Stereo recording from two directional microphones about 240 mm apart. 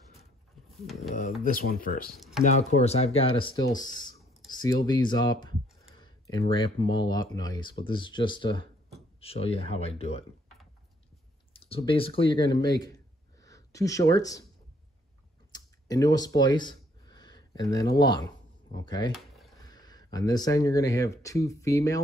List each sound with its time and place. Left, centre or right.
0.2 s pigeon: centre
1.4 s speech: left
2.4 s speech: left
4.4 s computer keyboard: centre
4.8 s speech: centre
11.5 s speech: left
15.5 s a sound: centre
19.1 s a sound: centre
19.6 s speech: centre